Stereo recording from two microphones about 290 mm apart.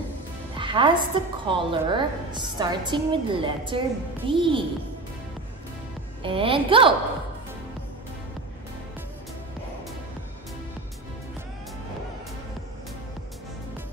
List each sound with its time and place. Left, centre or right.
0.6 s a woman's voice: centre
6.2 s a woman's voice: centre